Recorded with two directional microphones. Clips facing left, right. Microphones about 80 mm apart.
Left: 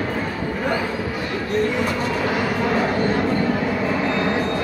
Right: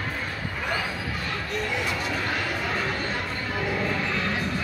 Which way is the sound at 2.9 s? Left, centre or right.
Left.